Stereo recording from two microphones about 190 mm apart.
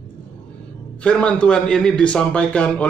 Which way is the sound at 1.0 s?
5° left (ahead or behind).